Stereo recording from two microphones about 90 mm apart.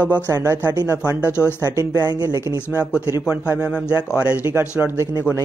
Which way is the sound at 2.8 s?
10° right (ahead or behind).